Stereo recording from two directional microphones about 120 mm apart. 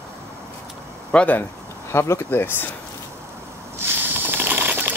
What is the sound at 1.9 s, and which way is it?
Speech, 20° left (ahead or behind).